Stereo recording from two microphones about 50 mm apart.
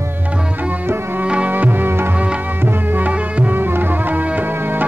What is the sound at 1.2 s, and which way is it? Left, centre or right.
Music, right.